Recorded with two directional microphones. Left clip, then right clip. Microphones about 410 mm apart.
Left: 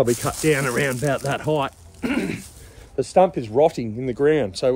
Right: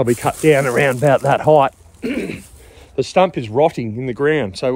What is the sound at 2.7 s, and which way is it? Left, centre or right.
A man's voice, centre.